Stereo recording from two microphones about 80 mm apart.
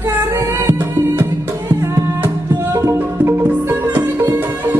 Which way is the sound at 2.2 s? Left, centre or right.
Right.